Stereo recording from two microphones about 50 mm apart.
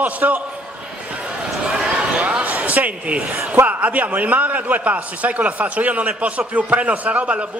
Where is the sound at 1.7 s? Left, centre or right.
Centre.